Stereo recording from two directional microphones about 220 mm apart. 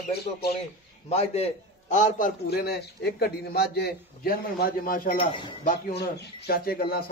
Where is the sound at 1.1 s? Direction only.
30° left (ahead or behind).